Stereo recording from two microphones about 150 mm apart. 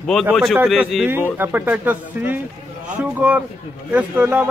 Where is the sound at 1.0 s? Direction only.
15° right (ahead or behind).